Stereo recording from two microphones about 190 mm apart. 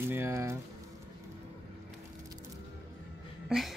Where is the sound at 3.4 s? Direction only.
Centre (ahead or behind).